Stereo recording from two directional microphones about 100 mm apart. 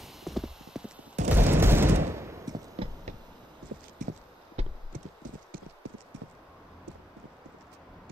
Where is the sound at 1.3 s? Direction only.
20° right (ahead or behind).